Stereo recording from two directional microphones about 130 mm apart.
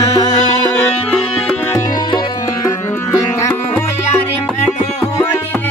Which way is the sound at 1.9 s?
35° left (ahead or behind).